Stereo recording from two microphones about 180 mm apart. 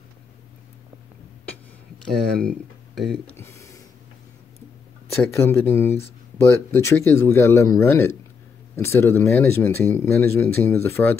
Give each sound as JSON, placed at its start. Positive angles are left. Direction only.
{"t": 2.4, "sound": "speech", "side_deg": 0}
{"t": 3.3, "sound": "speech", "side_deg": 15}
{"t": 5.1, "sound": "speech", "side_deg": 15}